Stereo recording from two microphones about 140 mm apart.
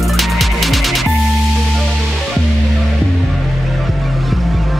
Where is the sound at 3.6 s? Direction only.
Centre (ahead or behind).